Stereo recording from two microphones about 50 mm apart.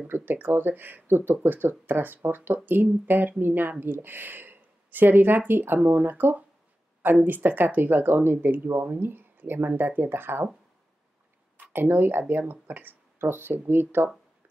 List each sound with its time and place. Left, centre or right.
0.1 s speech: right
8.6 s speech: right
8.9 s speech: right
11.7 s speech: right